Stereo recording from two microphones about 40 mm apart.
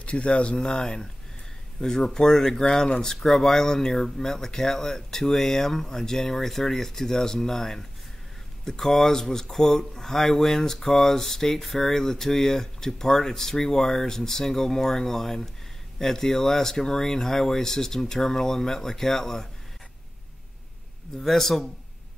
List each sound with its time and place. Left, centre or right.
0.0 s speech: left; by 19.4 s centre
21.2 s speech: centre